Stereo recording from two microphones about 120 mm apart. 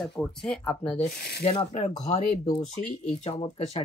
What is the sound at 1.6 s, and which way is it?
Speech, 65° left (ahead or behind).